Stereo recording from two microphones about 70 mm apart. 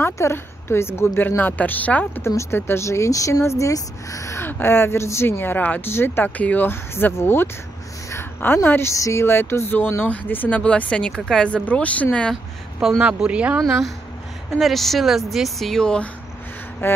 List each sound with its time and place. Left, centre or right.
0.0 s speech: left
2.2 s speech: left
4.5 s speech: left
8.6 s speech: left
8.9 s speech: left
9.2 s speech: left
10.6 s speech: centre
13.0 s speech: centre
14.6 s a woman's voice: centre
16.8 s speech: left